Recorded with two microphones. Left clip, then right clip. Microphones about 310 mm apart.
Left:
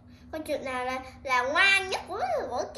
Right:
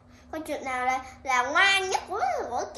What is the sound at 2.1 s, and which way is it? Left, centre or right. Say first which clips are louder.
Speech: right 2 dB; centre.